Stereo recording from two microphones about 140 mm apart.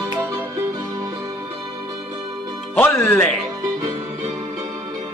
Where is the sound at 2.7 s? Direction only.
15° left (ahead or behind).